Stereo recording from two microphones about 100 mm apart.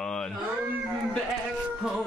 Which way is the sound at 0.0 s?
5° left (ahead or behind).